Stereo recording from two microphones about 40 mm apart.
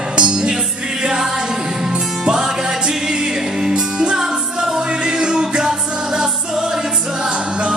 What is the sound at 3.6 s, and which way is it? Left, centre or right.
Music, centre.